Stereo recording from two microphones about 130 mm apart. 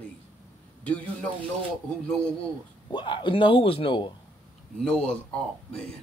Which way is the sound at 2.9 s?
40° left (ahead or behind).